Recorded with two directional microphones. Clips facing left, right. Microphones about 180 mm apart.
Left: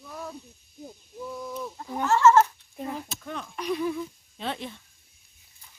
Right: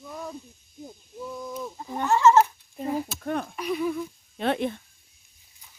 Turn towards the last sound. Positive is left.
turn(degrees=-55)  # may be behind; listen again after turning